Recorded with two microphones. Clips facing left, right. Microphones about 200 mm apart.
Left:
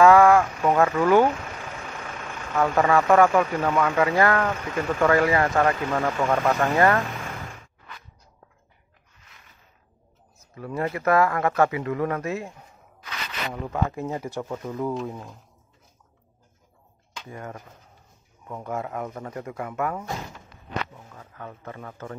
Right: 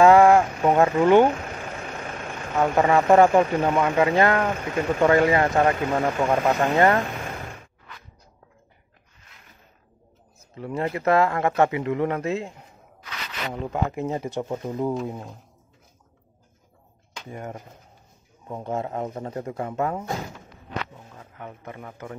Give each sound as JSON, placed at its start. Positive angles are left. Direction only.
{"t": 0.0, "sound": "speech", "side_deg": -25}
{"t": 10.4, "sound": "speech", "side_deg": -25}
{"t": 17.3, "sound": "speech", "side_deg": -25}